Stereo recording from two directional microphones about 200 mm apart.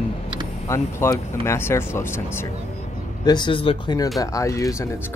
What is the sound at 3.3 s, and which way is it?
Speech, 25° left (ahead or behind).